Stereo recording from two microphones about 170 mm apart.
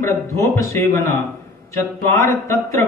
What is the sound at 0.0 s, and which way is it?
Speech, 15° left (ahead or behind).